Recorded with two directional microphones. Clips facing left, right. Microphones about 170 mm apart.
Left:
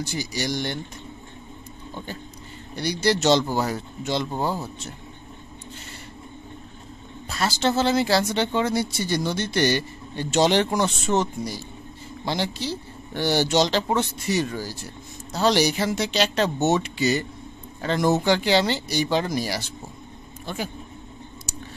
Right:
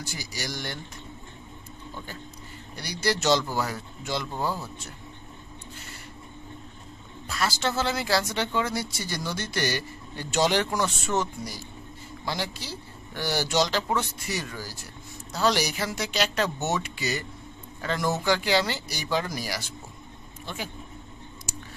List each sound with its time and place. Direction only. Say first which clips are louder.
0.0 s speech: left 8 dB; 20° left (ahead or behind)
2.7 s speech: left 6 dB; 25° left (ahead or behind)
7.2 s speech: left 5 dB; 25° left (ahead or behind)
20.4 s speech: left 5 dB; 40° left (ahead or behind)